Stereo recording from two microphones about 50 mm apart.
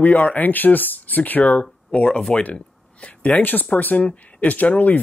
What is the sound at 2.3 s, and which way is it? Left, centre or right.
Speech, left.